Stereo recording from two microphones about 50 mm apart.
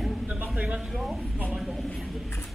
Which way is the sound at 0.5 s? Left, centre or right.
Right.